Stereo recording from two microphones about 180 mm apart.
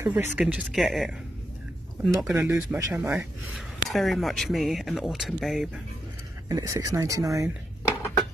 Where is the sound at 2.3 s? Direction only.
5° right (ahead or behind).